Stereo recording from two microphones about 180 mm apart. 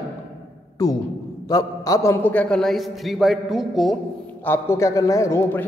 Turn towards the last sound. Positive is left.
turn(degrees=15)  # may be behind; listen again after turning